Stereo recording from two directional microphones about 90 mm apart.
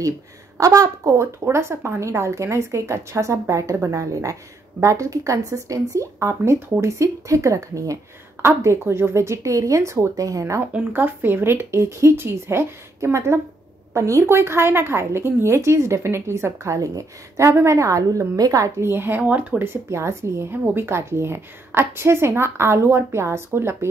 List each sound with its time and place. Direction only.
0.6 s a woman's voice: 40° right (ahead or behind)
10.7 s a woman's voice: 20° right (ahead or behind); by 18.9 s 40° right (ahead or behind)
18.9 s speech: 25° right (ahead or behind)